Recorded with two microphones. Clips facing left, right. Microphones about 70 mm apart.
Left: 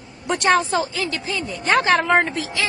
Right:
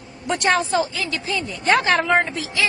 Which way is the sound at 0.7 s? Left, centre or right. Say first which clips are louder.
Even; left.